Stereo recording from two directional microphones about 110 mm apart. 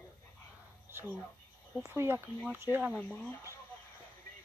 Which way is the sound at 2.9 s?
10° left (ahead or behind).